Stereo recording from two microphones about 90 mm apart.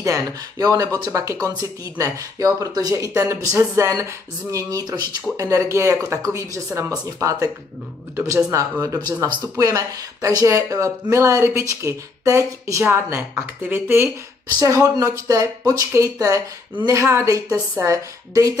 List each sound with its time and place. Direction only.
0.0 s speech: 40° right (ahead or behind)
8.5 s speech: 35° right (ahead or behind)
14.6 s speech: 35° right (ahead or behind)